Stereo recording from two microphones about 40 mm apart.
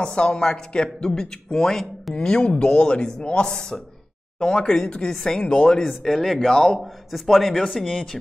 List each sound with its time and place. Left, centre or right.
0.0 s speech: left
2.1 s speech: left
5.9 s a man's voice: centre
6.8 s a man's voice: centre